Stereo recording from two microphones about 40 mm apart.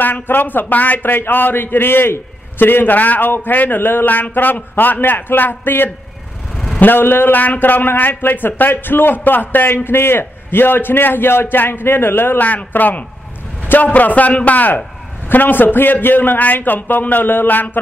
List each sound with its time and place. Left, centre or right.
0.0 s a man's voice: left
2.6 s a man's voice: left
3.3 s a man's voice: left
9.8 s a man's voice: left
12.4 s a man's voice: left